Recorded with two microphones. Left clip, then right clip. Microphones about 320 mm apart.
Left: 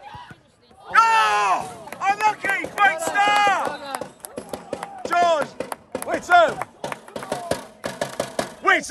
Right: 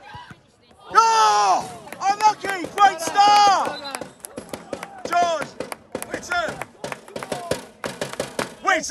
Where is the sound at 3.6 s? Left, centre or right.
Centre.